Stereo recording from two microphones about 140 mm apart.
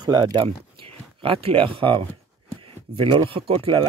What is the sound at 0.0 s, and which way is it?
Speech, 30° right (ahead or behind).